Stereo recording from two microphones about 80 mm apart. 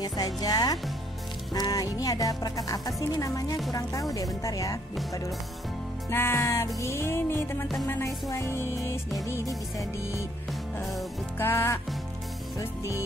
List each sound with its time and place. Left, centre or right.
0.0 s speech: left
1.5 s music: left
6.0 s music: left
11.3 s music: left